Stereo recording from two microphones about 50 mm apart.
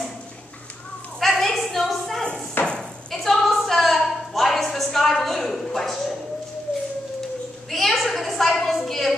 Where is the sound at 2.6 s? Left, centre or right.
Left.